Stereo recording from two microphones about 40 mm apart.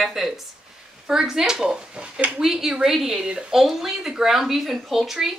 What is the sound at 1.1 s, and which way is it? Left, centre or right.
Speech, centre.